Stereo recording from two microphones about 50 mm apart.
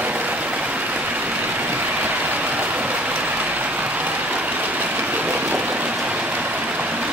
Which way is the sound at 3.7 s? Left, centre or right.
Right.